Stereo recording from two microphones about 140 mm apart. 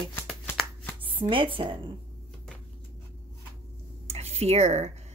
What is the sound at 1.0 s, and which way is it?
Speech, 40° right (ahead or behind).